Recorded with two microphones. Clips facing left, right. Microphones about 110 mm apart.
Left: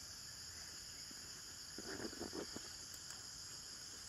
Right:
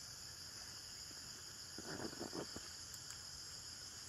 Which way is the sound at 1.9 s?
15° right (ahead or behind).